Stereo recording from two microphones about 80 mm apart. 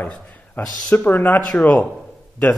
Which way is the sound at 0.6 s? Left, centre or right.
Left.